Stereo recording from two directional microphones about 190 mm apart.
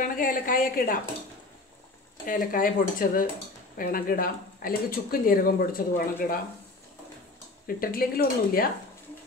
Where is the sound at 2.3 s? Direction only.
45° left (ahead or behind).